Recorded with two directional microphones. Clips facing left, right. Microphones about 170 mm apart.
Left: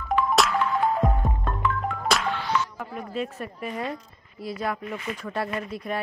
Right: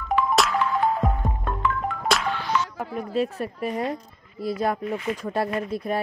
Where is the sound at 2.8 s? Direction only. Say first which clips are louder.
Right 5 dB; 35° right (ahead or behind).